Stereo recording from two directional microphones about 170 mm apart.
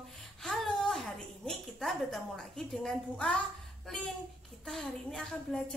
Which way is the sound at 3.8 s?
Centre (ahead or behind).